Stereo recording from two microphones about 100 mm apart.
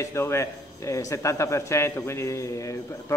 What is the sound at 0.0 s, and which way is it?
A man's voice, 25° left (ahead or behind).